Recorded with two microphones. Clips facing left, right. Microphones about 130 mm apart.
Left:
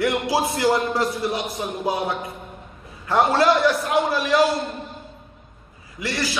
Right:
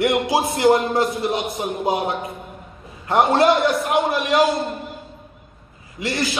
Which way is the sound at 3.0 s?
25° right (ahead or behind).